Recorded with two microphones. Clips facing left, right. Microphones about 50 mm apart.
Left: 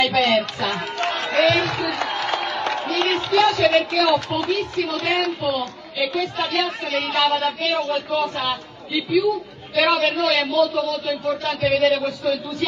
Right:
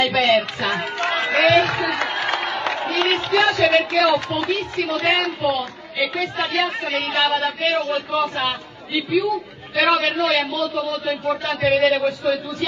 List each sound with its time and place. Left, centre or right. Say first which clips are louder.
0.0 s a man's voice: right 1 dB; right
1.3 s a man's voice: right 2 dB; right